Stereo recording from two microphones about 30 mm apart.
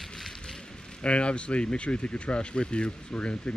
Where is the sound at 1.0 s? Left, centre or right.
Left.